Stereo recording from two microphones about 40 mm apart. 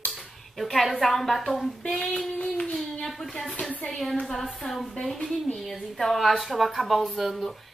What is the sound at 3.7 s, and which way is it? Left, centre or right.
Speech, left.